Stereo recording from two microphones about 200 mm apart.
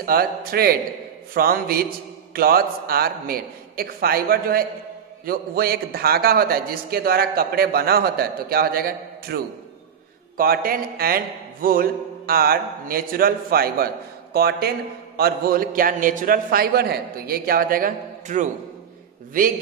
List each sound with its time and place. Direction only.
0.0 s a man's voice: 50° right (ahead or behind)